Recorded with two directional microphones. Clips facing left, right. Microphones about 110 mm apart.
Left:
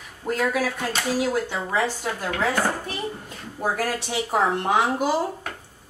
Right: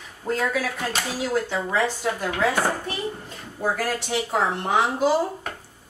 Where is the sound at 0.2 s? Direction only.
10° left (ahead or behind).